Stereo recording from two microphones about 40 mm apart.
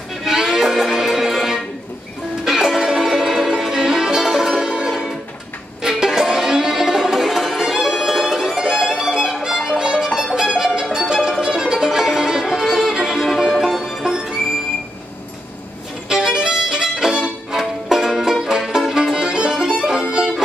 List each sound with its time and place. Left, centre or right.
0.2 s music: centre
4.6 s music: right
16.1 s violin: centre
17.6 s music: centre